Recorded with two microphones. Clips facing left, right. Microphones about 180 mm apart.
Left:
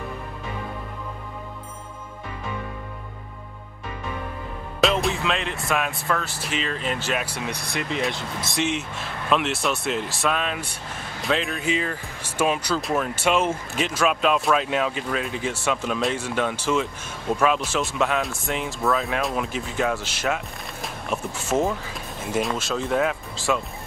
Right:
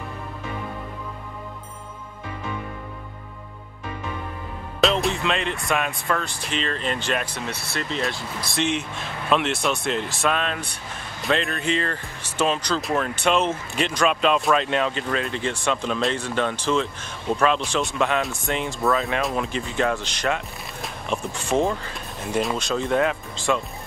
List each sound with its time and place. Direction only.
4.7 s speech: centre (ahead or behind); by 8.5 s 20° left (ahead or behind)
8.5 s speech: 5° left (ahead or behind)